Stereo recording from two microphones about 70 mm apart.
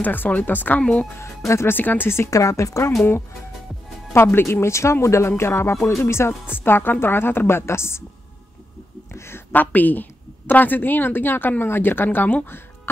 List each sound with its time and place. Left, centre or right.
0.0 s a woman's voice: left
2.3 s a woman's voice: left
4.1 s a woman's voice: left
9.1 s a sound: left
9.5 s a woman's voice: left
12.4 s music: left